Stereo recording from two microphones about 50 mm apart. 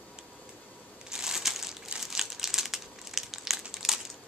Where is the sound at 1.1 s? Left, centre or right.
Centre.